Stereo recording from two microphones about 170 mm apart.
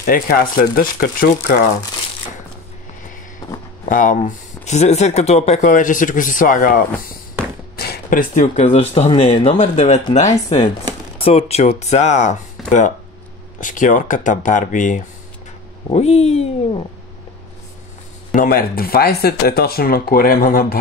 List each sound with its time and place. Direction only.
0.0 s speech: 55° left (ahead or behind)
3.9 s speech: 50° left (ahead or behind)
7.7 s speech: 65° left (ahead or behind); by 16.8 s 40° left (ahead or behind)
18.3 s speech: 55° left (ahead or behind)